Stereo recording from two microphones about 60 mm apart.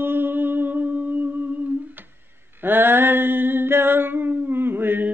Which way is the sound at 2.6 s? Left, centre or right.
Right.